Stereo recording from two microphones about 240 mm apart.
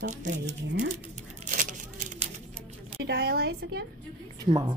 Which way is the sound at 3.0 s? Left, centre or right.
Right.